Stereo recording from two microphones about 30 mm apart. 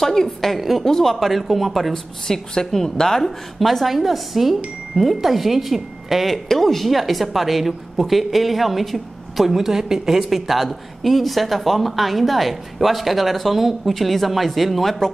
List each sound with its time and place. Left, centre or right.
0.0 s a woman's voice: centre
0.6 s a woman's voice: centre
0.8 s speech: centre
1.2 s a woman's voice: centre
2.2 s a woman's voice: left
3.3 s a woman's voice: centre
6.3 s a woman's voice: centre
9.5 s a woman's voice: centre
10.3 s a woman's voice: centre